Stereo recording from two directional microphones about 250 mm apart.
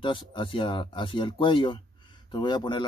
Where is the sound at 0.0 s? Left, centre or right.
Centre.